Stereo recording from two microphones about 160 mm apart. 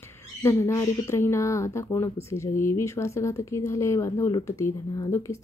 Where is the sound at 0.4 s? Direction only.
15° left (ahead or behind).